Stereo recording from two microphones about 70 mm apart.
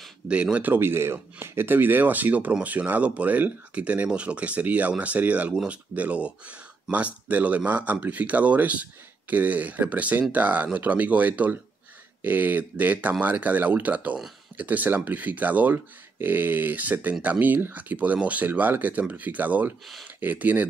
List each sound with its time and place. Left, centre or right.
0.3 s speech: centre
5.5 s speech: centre
5.9 s speech: centre